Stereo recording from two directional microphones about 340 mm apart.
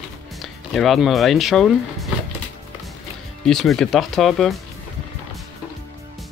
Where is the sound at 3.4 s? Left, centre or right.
Centre.